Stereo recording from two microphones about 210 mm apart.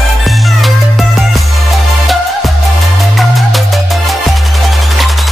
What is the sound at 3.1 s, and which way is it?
Music, centre (ahead or behind).